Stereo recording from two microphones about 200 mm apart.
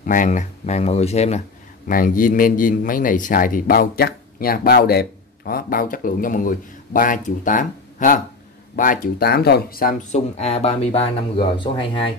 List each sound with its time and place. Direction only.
0.0 s speech: 40° left (ahead or behind)
1.9 s speech: 45° left (ahead or behind); by 12.0 s 25° left (ahead or behind)